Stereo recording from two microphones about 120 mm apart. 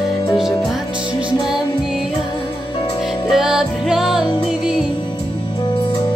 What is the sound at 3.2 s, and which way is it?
Music, 5° right (ahead or behind).